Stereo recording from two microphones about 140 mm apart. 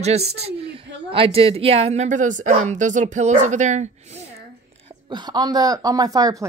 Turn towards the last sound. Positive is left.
turn(degrees=-25)  # may be behind; listen again after turning